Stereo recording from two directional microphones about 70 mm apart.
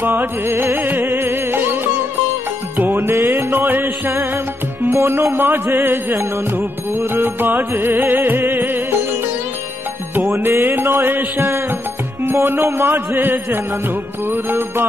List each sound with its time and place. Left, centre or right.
0.0 s music: right
3.0 s music: right
10.3 s music: right